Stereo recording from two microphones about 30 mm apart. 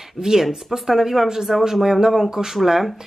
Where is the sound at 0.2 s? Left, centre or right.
Centre.